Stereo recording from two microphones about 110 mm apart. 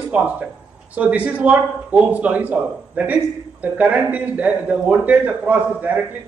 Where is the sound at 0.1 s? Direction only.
15° right (ahead or behind).